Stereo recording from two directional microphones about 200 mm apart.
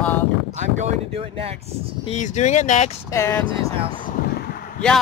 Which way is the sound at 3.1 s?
15° left (ahead or behind).